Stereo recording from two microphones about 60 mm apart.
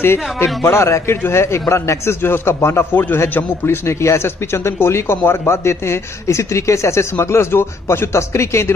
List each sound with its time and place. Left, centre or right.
0.0 s speech: left
0.7 s a man's voice: left